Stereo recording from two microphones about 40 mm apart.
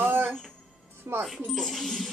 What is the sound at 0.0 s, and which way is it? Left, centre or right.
Music, right.